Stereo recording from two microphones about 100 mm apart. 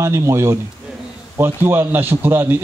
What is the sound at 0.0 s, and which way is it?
A man's voice, 30° right (ahead or behind).